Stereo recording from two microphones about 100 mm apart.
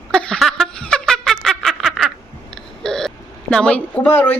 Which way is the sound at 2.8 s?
5° left (ahead or behind).